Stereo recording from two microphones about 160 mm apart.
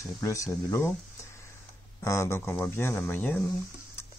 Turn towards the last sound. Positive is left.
turn(degrees=10)  # may be behind; listen again after turning